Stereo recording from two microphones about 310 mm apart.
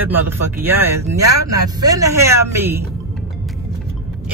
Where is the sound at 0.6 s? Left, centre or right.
Centre.